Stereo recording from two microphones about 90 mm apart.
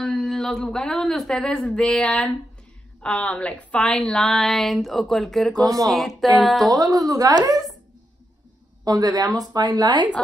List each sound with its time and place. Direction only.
0.0 s a woman's voice: 5° left (ahead or behind)
6.7 s speech: 40° right (ahead or behind)
8.8 s speech: 45° right (ahead or behind)